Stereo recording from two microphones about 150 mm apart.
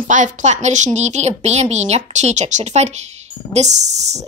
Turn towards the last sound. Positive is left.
turn(degrees=-50)  # may be behind; listen again after turning